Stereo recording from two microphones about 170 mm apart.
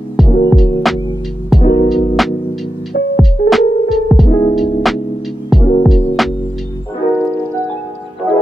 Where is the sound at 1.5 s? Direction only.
Centre (ahead or behind).